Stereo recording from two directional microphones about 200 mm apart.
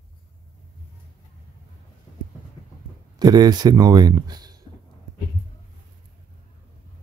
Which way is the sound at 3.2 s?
20° right (ahead or behind).